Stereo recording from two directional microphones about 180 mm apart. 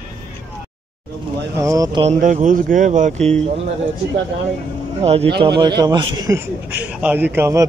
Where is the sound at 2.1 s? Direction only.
40° right (ahead or behind).